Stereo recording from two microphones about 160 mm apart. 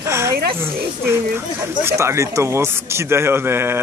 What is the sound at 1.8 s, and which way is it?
Speech, 15° right (ahead or behind).